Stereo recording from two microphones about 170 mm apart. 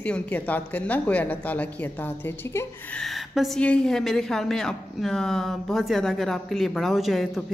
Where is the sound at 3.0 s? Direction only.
Centre (ahead or behind).